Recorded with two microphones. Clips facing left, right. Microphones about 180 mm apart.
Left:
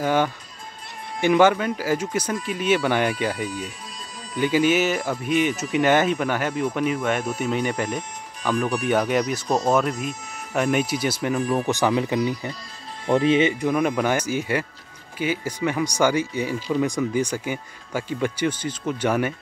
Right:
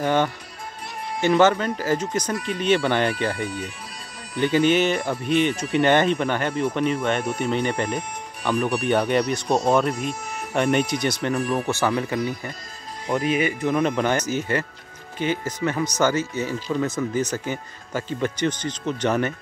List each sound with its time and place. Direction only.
0.0 s speech: 10° left (ahead or behind)
3.4 s speech: 60° right (ahead or behind)
4.4 s speech: 10° left (ahead or behind)
8.5 s speech: 10° right (ahead or behind)
8.8 s speech: 5° left (ahead or behind); by 13.7 s 20° left (ahead or behind)
13.7 s speech: 10° left (ahead or behind)